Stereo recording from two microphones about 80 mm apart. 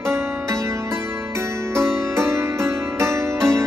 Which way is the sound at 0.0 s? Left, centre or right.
Right.